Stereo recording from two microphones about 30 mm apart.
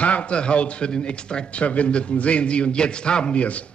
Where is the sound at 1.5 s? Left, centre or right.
Left.